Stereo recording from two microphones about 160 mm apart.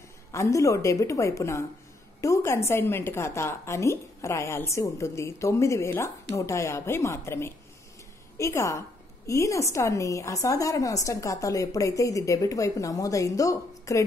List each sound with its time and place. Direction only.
0.3 s a woman's voice: 20° left (ahead or behind)